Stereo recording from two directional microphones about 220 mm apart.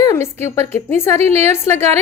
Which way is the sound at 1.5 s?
10° left (ahead or behind).